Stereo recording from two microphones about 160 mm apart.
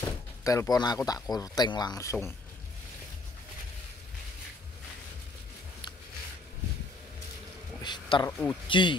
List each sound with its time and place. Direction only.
0.4 s speech: 20° left (ahead or behind)
7.8 s speech: 30° left (ahead or behind)
8.6 s speech: 30° left (ahead or behind)